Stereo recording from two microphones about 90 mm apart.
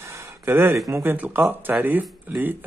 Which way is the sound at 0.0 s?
30° right (ahead or behind).